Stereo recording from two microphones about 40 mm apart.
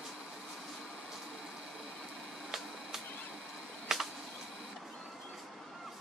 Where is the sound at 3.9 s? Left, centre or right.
Centre.